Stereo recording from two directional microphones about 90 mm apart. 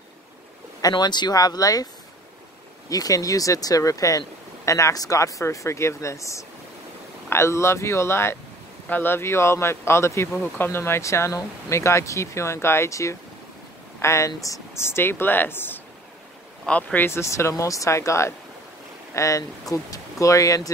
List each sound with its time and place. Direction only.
0.7 s speech: 45° left (ahead or behind)
2.9 s speech: 40° left (ahead or behind); by 17.0 s 15° left (ahead or behind)
17.0 s speech: 30° left (ahead or behind)